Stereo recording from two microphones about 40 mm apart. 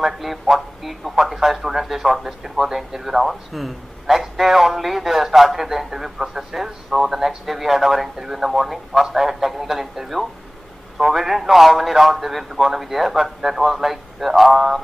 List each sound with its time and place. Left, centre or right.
0.0 s a man's voice: centre